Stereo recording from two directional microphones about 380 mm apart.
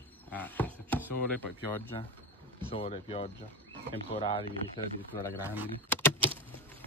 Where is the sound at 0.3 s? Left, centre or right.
Centre.